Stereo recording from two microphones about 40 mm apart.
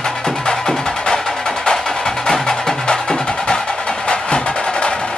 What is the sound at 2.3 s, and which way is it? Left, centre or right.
Music, centre.